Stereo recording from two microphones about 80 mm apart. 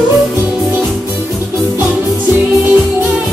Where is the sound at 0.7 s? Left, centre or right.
Right.